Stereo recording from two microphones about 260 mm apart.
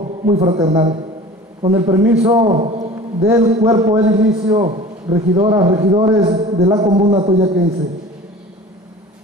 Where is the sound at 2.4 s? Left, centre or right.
Right.